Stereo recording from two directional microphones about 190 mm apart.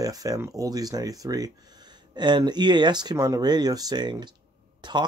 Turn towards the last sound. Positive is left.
turn(degrees=-25)  # may be behind; listen again after turning